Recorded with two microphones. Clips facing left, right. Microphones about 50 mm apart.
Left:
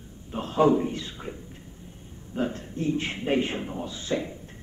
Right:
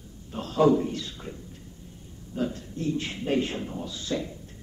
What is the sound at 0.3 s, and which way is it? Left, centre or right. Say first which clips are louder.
A man's voice: even; left.